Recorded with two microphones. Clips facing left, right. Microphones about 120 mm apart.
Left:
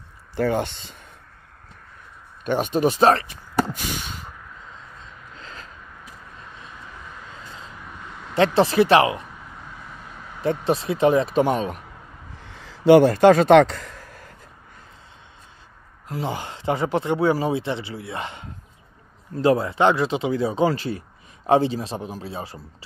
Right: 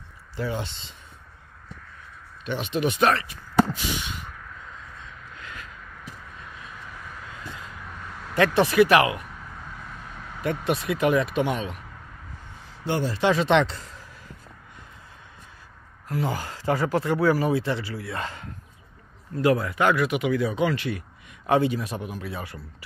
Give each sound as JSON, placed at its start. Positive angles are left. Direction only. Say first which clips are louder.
{"t": 0.4, "sound": "speech", "louder": "left 8 dB", "side_deg": 55}
{"t": 2.4, "sound": "speech", "louder": "left 5 dB", "side_deg": 45}
{"t": 3.7, "sound": "snort", "louder": "even", "side_deg": 45}
{"t": 5.0, "sound": "a sound", "louder": "even", "side_deg": 30}
{"t": 7.8, "sound": "a sound", "louder": "even", "side_deg": 0}
{"t": 8.5, "sound": "speech", "louder": "left 2 dB", "side_deg": 30}
{"t": 9.8, "sound": "vehicle", "louder": "even", "side_deg": 5}
{"t": 10.4, "sound": "speech", "louder": "left 4 dB", "side_deg": 30}
{"t": 12.4, "sound": "a sound", "louder": "left 15 dB", "side_deg": 90}
{"t": 13.1, "sound": "speech", "louder": "left 8 dB", "side_deg": 45}
{"t": 16.1, "sound": "speech", "louder": "even", "side_deg": 25}